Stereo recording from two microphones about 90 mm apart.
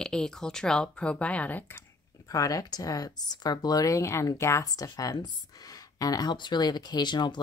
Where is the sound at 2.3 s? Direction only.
40° left (ahead or behind); by 7.4 s 55° left (ahead or behind).